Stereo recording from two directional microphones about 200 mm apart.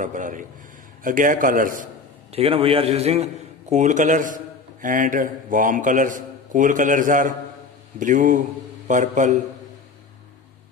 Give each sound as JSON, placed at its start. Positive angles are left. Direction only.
{"t": 0.0, "sound": "a man's voice", "side_deg": -40}
{"t": 2.3, "sound": "a man's voice", "side_deg": -30}